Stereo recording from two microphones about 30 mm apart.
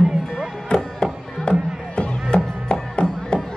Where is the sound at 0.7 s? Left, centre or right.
Left.